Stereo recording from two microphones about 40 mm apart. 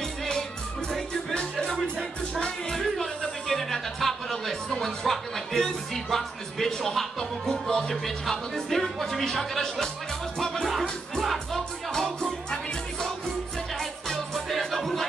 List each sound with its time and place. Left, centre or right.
0.2 s music: centre
1.3 s music: left
2.7 s music: centre
7.9 s speech: centre
10.6 s music: centre
11.9 s music: centre
13.7 s music: centre